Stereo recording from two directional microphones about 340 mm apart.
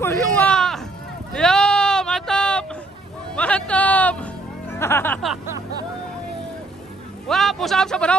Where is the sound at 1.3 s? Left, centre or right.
Centre.